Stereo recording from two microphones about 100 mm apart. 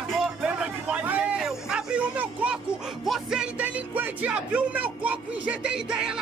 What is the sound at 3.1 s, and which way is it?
Speech, 5° right (ahead or behind).